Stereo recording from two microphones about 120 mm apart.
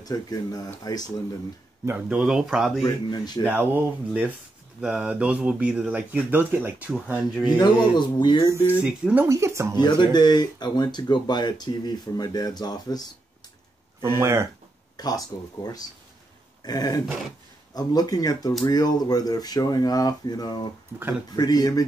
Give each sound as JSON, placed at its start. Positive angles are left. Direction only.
{"t": 0.0, "sound": "speech", "side_deg": 35}
{"t": 1.9, "sound": "speech", "side_deg": -10}
{"t": 2.8, "sound": "speech", "side_deg": 35}
{"t": 3.4, "sound": "speech", "side_deg": -15}
{"t": 7.5, "sound": "speech", "side_deg": 40}
{"t": 8.8, "sound": "speech", "side_deg": -10}
{"t": 9.8, "sound": "speech", "side_deg": 40}
{"t": 14.0, "sound": "speech", "side_deg": -20}
{"t": 15.0, "sound": "speech", "side_deg": 30}